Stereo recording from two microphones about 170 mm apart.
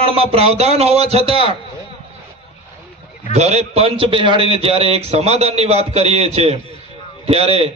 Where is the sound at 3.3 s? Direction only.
40° right (ahead or behind).